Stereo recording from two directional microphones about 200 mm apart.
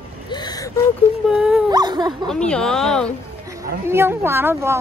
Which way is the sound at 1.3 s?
5° right (ahead or behind).